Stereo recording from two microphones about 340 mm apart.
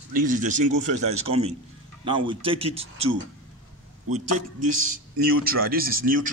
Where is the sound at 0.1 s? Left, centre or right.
Right.